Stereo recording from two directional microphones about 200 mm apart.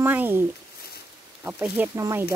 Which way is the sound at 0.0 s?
10° right (ahead or behind).